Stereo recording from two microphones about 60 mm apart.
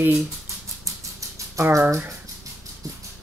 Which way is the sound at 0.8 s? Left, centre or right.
Right.